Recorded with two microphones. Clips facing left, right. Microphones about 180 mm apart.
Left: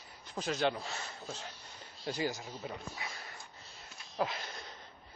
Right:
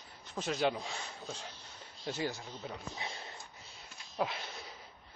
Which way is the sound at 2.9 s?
25° right (ahead or behind).